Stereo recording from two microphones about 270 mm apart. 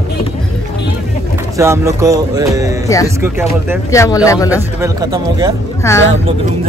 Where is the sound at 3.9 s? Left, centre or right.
Centre.